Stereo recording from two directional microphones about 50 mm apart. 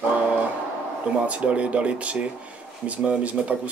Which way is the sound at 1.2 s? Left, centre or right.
Right.